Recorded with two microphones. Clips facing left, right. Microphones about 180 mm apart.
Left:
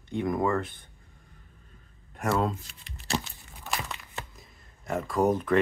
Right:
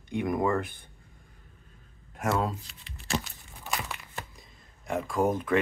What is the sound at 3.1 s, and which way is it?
Crumpling, 35° left (ahead or behind).